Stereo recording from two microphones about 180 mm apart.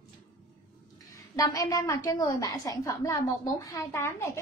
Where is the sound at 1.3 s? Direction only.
20° left (ahead or behind).